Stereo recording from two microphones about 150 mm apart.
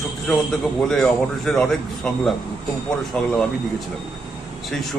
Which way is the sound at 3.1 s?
5° left (ahead or behind).